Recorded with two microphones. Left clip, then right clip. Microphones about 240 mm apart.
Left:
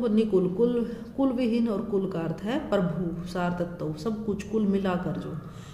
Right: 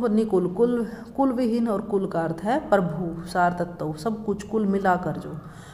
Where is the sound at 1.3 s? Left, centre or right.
Centre.